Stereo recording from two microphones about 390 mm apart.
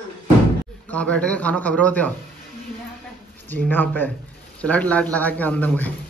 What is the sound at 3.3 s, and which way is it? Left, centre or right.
A man's voice, centre.